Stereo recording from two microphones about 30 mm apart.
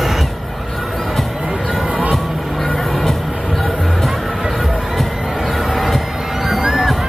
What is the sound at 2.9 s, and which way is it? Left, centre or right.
Music, centre.